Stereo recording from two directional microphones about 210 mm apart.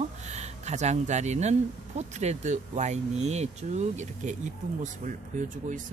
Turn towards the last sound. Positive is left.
turn(degrees=-40)  # may be behind; listen again after turning